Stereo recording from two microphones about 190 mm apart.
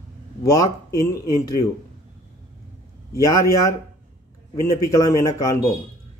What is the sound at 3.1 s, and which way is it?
Speech, 15° left (ahead or behind).